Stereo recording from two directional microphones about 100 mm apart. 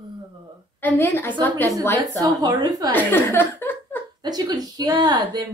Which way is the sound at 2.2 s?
40° right (ahead or behind).